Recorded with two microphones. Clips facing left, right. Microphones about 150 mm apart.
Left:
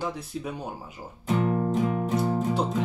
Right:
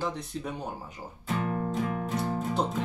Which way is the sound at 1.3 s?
25° left (ahead or behind).